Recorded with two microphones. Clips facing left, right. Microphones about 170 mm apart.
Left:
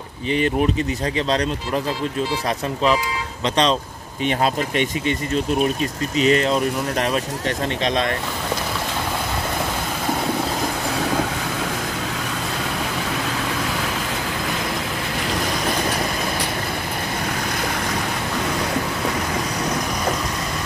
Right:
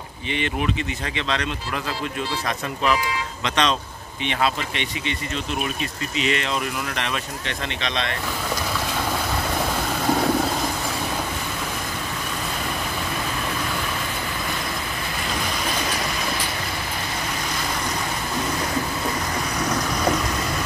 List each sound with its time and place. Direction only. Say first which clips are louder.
0.3 s speech: left 6 dB; 40° left (ahead or behind)
3.4 s speech: left 4 dB; 35° left (ahead or behind)